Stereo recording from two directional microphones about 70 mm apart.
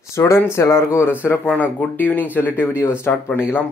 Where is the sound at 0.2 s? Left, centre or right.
Left.